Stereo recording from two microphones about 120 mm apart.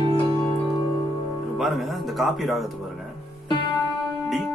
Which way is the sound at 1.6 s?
Centre (ahead or behind).